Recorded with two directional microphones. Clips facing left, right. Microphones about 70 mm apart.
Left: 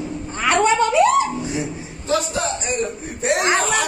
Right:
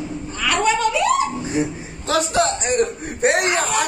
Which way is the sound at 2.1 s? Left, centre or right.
Right.